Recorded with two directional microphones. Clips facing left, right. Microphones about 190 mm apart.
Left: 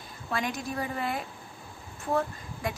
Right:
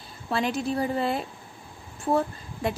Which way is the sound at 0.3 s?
30° right (ahead or behind).